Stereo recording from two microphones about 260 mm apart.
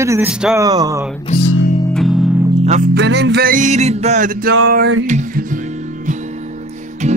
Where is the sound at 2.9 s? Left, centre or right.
Right.